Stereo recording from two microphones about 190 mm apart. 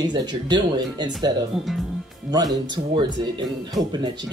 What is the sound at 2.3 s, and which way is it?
Speech, 20° right (ahead or behind).